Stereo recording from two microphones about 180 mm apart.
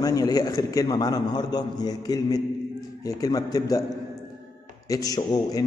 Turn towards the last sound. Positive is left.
turn(degrees=20)  # may be behind; listen again after turning